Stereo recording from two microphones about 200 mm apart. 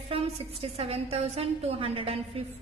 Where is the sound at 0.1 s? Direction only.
30° right (ahead or behind).